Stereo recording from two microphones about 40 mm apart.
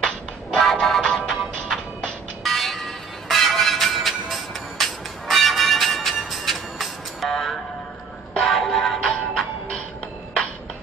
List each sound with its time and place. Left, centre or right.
0.0 s music: centre
1.0 s music: centre
1.3 s music: centre